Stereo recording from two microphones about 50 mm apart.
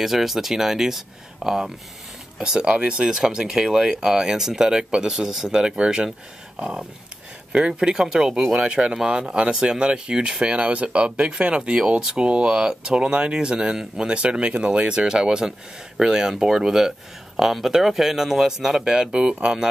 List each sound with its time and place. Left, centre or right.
0.0 s speech: centre
2.7 s speech: right
3.1 s speech: centre
7.5 s speech: centre
8.6 s speech: centre